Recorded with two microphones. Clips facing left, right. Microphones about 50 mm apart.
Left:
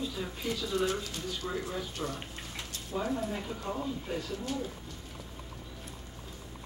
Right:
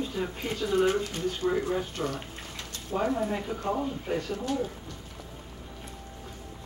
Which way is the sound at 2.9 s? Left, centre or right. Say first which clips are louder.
Right 5 dB; right.